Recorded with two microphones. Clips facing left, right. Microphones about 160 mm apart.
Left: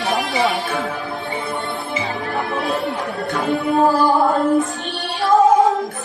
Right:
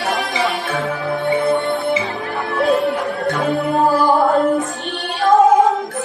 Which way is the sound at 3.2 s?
Centre (ahead or behind).